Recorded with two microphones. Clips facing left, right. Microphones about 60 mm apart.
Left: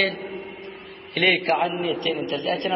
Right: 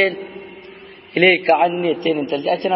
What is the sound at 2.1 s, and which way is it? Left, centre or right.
Speech, right.